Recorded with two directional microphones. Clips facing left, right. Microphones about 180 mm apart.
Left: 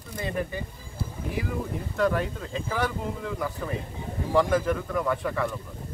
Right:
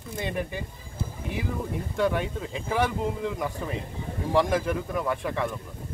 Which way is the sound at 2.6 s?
20° right (ahead or behind).